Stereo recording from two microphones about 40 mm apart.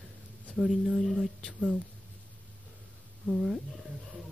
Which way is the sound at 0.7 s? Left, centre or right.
Centre.